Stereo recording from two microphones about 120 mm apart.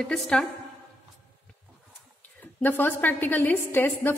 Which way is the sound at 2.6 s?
15° left (ahead or behind).